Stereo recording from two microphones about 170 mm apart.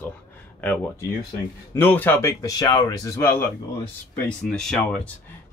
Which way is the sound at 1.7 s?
10° left (ahead or behind).